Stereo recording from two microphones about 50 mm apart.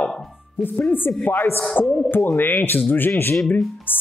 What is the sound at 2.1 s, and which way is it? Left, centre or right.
Speech, left.